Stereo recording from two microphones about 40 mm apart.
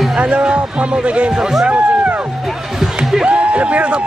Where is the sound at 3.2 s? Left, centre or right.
Right.